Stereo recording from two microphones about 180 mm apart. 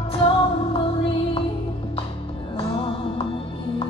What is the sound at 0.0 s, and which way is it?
Music, 30° left (ahead or behind).